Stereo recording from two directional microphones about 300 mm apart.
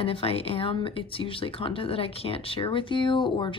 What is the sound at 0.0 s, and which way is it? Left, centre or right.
Speech, centre.